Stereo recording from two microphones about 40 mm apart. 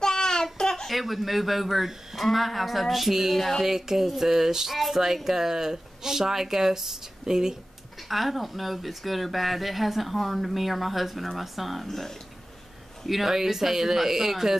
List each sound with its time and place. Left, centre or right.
0.0 s a sound: centre
0.8 s a woman's voice: centre
8.1 s speech: centre
13.0 s a woman's voice: centre